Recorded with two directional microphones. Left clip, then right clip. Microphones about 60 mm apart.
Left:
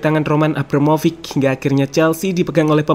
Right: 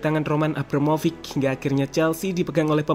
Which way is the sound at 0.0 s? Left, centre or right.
Left.